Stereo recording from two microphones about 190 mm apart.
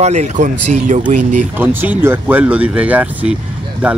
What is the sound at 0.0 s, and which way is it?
Speech, 35° right (ahead or behind).